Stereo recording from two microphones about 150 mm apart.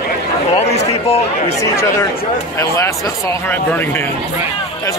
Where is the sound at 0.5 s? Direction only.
45° left (ahead or behind).